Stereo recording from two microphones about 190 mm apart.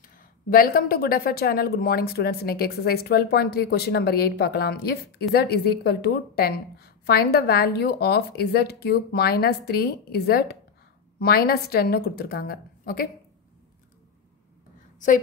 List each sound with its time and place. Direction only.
0.0 s a woman's voice: 50° left (ahead or behind)